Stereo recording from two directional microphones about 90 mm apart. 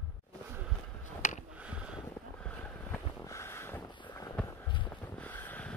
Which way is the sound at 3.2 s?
30° left (ahead or behind).